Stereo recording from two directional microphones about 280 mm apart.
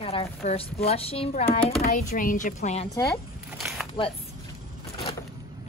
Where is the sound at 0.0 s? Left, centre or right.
Centre.